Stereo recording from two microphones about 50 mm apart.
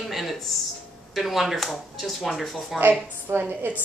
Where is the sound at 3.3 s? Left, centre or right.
Right.